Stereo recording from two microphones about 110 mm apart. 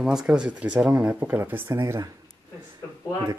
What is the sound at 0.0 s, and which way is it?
Speech, 5° right (ahead or behind).